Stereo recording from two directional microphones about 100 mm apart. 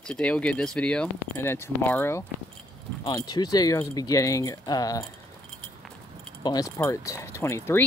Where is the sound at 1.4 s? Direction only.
25° left (ahead or behind).